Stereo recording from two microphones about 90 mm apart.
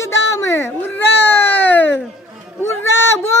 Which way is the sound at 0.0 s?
35° left (ahead or behind).